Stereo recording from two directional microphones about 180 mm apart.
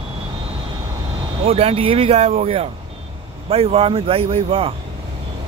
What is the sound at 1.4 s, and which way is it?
Speech, 35° right (ahead or behind).